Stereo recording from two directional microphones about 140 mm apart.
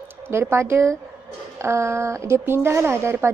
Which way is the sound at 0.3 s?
20° right (ahead or behind).